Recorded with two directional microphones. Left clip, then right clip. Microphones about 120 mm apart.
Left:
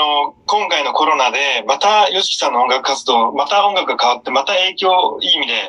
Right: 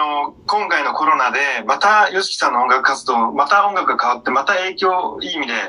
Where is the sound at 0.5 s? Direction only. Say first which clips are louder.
Even; 20° left (ahead or behind).